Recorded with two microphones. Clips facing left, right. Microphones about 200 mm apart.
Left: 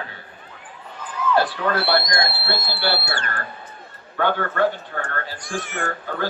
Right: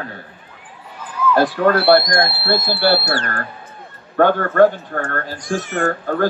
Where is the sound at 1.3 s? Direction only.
50° right (ahead or behind).